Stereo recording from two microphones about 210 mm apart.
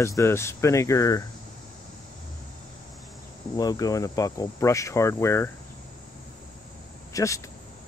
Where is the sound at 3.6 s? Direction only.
15° left (ahead or behind).